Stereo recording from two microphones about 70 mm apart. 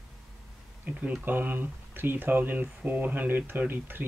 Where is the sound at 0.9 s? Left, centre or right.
Right.